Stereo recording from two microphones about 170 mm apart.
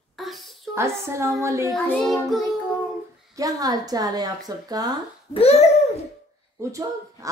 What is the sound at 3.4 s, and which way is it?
Speech, 20° right (ahead or behind).